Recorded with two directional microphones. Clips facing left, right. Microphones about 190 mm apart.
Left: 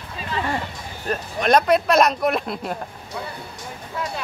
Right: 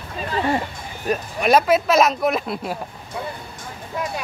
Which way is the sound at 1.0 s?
10° right (ahead or behind).